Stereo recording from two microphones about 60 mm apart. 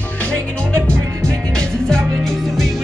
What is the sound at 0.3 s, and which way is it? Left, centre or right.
Music, centre.